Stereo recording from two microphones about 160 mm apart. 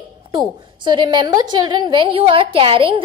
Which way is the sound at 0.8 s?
30° right (ahead or behind).